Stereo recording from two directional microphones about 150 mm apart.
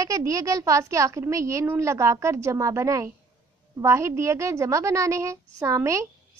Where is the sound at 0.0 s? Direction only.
20° right (ahead or behind).